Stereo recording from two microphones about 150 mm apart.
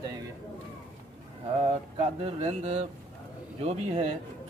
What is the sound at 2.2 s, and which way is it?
Speech, 45° right (ahead or behind).